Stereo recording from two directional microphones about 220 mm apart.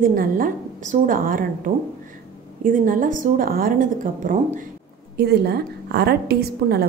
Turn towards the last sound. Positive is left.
turn(degrees=-45)  # may be behind; listen again after turning